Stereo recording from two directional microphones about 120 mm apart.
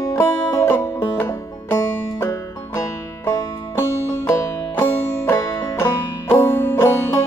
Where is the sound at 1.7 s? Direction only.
20° left (ahead or behind).